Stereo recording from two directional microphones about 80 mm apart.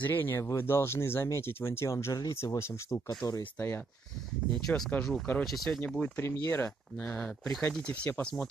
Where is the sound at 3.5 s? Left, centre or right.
Left.